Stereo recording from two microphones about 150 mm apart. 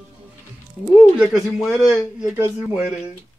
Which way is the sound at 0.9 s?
5° right (ahead or behind).